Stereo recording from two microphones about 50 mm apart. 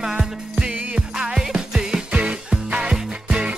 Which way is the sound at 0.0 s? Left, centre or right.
Centre.